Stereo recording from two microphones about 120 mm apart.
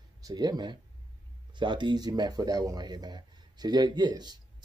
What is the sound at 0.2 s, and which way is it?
Speech, 35° right (ahead or behind).